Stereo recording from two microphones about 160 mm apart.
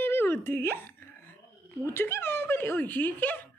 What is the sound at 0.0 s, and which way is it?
Wail, 15° left (ahead or behind).